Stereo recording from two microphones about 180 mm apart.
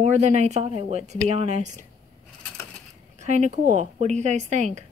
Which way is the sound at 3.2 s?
40° right (ahead or behind).